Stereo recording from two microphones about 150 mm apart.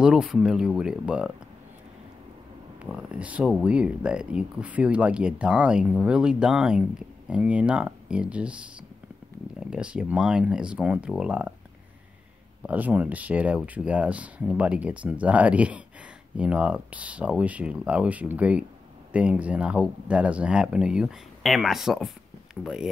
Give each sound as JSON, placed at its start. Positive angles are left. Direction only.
{"t": 0.0, "sound": "speech", "side_deg": -5}
{"t": 2.8, "sound": "speech", "side_deg": -5}
{"t": 9.6, "sound": "speech", "side_deg": -5}
{"t": 12.6, "sound": "speech", "side_deg": -10}